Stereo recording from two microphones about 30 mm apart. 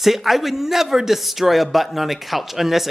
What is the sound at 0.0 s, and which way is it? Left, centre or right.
Speech, centre.